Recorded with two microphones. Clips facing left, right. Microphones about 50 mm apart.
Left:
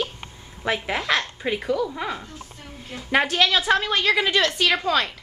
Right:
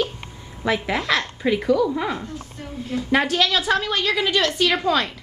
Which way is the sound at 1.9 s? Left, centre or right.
Centre.